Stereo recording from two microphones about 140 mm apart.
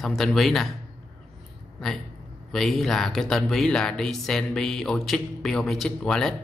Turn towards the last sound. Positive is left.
turn(degrees=5)  # may be behind; listen again after turning